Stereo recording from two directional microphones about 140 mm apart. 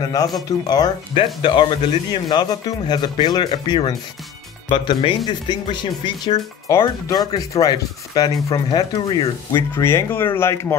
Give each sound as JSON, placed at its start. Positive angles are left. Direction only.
{"t": 0.0, "sound": "speech", "side_deg": 25}
{"t": 9.8, "sound": "speech", "side_deg": 20}